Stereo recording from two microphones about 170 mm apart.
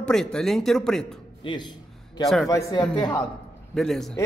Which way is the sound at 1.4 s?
30° left (ahead or behind).